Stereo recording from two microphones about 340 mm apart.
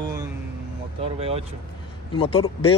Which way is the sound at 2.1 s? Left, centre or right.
Centre.